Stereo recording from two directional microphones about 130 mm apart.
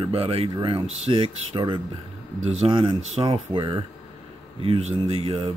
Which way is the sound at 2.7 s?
40° right (ahead or behind).